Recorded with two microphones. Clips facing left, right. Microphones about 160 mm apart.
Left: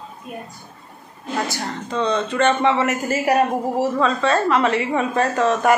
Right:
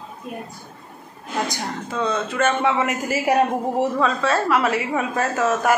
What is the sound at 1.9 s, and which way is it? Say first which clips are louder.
A woman's voice: left 3 dB; 5° right (ahead or behind).